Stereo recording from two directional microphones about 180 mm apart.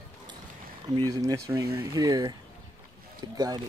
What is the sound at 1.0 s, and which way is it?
Speech, 20° right (ahead or behind).